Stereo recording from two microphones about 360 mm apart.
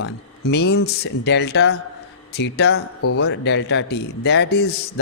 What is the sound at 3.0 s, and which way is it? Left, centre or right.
A man's voice, left.